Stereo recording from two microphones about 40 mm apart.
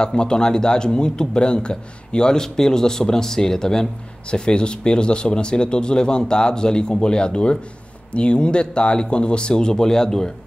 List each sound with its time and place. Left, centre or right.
0.0 s a man's voice: left